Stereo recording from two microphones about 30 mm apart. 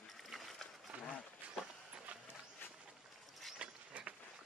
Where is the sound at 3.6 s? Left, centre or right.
Right.